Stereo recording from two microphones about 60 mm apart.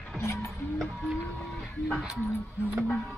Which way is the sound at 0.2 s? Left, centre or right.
Left.